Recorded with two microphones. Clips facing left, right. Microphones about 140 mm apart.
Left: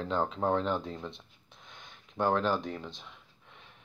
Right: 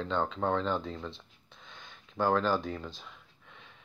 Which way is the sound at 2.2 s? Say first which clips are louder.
Even; centre (ahead or behind).